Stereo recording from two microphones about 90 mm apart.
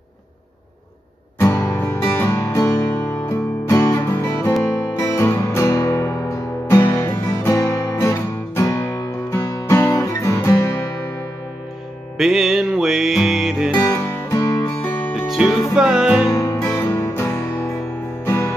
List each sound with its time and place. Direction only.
1.4 s music: 30° left (ahead or behind)
12.2 s music: 5° right (ahead or behind)
13.7 s music: 30° left (ahead or behind)
14.4 s music: 45° left (ahead or behind)
14.8 s music: 20° left (ahead or behind)
15.1 s music: 5° right (ahead or behind)
16.3 s music: 35° left (ahead or behind)